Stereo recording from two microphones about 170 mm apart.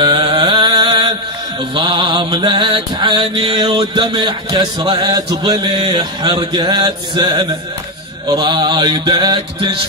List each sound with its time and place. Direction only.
0.0 s music: 25° right (ahead or behind)
1.8 s mantra: 25° right (ahead or behind)